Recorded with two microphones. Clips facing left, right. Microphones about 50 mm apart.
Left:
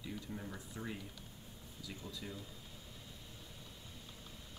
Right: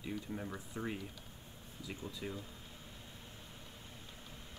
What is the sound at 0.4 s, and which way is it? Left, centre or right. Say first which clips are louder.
Speech: right 4 dB; centre.